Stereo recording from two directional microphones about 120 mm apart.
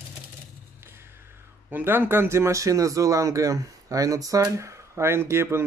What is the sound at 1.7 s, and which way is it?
Speech, 15° right (ahead or behind).